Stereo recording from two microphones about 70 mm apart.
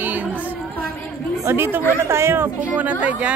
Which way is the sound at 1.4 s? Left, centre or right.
Right.